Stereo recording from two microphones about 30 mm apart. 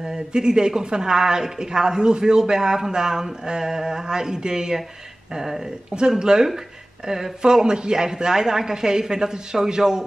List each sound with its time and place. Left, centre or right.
0.0 s speech: right
5.3 s speech: centre
5.9 s speech: right
7.6 s speech: right